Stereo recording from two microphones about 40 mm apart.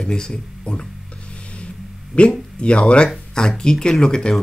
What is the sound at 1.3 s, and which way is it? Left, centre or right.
Vehicle, left.